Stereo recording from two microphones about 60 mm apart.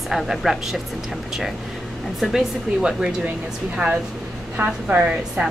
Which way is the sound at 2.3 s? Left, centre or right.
Centre.